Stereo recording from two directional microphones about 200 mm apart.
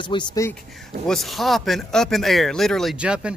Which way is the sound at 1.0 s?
Centre (ahead or behind).